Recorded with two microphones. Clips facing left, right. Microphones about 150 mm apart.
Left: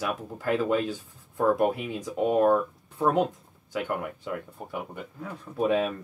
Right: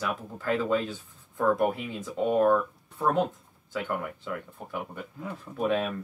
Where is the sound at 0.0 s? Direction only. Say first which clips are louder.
Left 2 dB; 15° left (ahead or behind).